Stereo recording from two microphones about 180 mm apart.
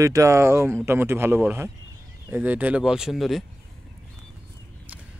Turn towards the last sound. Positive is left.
turn(degrees=0)  # may be behind; listen again after turning